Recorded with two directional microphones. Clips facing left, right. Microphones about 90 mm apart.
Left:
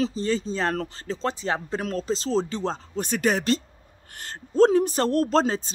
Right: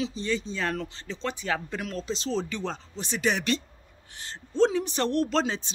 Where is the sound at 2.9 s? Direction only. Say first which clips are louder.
Left 4 dB; 45° left (ahead or behind).